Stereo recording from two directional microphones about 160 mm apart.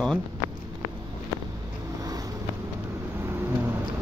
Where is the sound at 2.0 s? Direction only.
25° right (ahead or behind).